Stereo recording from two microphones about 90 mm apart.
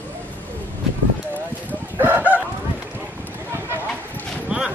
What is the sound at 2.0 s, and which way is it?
Chicken, 25° right (ahead or behind).